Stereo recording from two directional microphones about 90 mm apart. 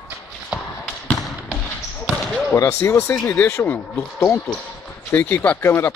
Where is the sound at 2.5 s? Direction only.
30° left (ahead or behind).